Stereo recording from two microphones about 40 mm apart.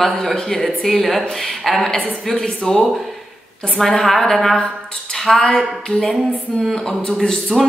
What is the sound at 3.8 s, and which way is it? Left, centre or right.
A woman's voice, centre.